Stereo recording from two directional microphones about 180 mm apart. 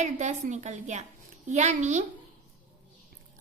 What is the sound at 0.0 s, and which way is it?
Speech, 40° right (ahead or behind).